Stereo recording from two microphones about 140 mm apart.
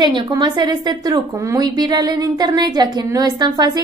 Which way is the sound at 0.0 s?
30° right (ahead or behind).